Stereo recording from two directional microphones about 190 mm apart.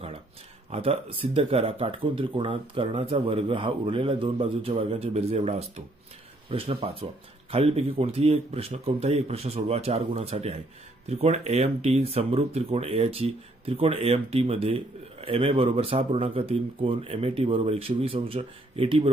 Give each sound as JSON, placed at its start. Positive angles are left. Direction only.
{"t": 0.7, "sound": "speech", "side_deg": -30}